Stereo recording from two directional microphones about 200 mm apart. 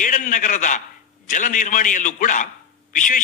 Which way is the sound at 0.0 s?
40° left (ahead or behind).